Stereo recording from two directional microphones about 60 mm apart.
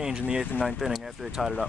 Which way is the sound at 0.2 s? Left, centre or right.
Centre.